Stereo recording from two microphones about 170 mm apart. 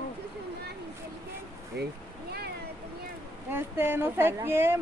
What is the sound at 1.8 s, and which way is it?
Speech, 75° right (ahead or behind).